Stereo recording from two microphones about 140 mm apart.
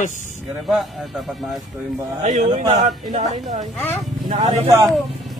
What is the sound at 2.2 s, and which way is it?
Speech, 65° right (ahead or behind).